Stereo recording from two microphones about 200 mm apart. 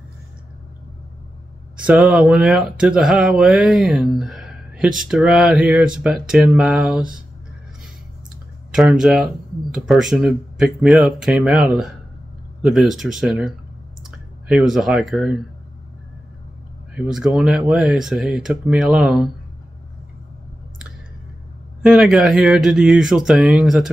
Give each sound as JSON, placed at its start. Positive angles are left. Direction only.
{"t": 1.9, "sound": "speech", "side_deg": -5}
{"t": 8.7, "sound": "speech", "side_deg": -5}
{"t": 16.9, "sound": "speech", "side_deg": -5}
{"t": 21.8, "sound": "speech", "side_deg": 0}